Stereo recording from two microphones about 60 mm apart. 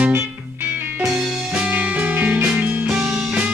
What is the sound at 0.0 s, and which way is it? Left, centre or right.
Music, right.